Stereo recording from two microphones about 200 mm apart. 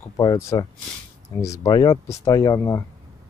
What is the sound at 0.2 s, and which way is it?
Speech, 20° left (ahead or behind).